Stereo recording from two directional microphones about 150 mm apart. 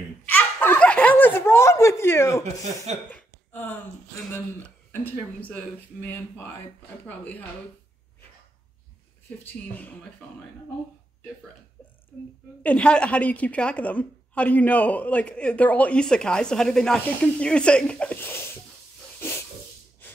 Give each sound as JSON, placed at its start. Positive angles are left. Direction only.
{"t": 0.3, "sound": "snicker", "side_deg": 15}
{"t": 2.6, "sound": "speech", "side_deg": -50}
{"t": 3.1, "sound": "a sound", "side_deg": 10}
{"t": 7.1, "sound": "a woman's voice", "side_deg": 10}
{"t": 9.4, "sound": "a woman's voice", "side_deg": 10}
{"t": 12.6, "sound": "a woman's voice", "side_deg": 5}